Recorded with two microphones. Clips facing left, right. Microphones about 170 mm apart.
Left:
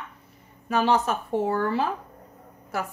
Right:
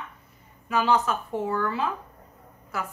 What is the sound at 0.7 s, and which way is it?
A woman's voice, 30° left (ahead or behind).